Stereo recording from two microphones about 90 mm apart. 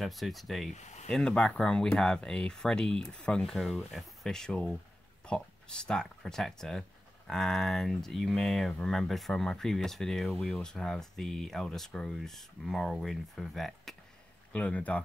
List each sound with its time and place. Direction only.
0.0 s speech: centre (ahead or behind)
14.5 s speech: 15° left (ahead or behind)